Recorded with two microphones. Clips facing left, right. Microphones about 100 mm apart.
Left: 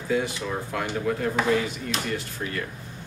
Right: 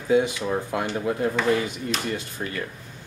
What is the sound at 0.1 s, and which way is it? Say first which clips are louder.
Speech: right 6 dB; 20° right (ahead or behind).